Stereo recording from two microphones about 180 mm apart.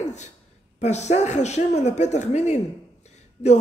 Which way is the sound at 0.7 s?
40° left (ahead or behind).